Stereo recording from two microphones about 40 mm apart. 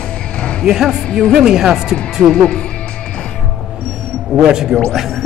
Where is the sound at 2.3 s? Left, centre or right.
Centre.